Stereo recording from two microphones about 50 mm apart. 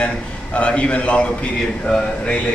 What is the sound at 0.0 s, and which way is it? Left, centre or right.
Speech, left.